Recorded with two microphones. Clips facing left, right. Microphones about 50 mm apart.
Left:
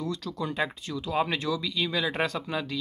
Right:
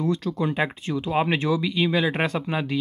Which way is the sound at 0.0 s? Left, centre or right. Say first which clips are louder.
Right 8 dB; right.